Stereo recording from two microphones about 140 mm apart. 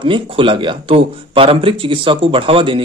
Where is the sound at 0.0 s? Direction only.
35° right (ahead or behind).